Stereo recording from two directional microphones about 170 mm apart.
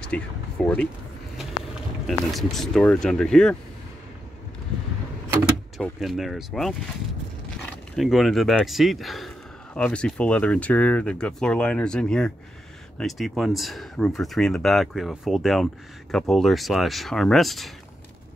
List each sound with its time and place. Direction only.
0.1 s speech: 5° left (ahead or behind)
2.0 s speech: centre (ahead or behind)
5.8 s speech: centre (ahead or behind)
7.9 s speech: centre (ahead or behind)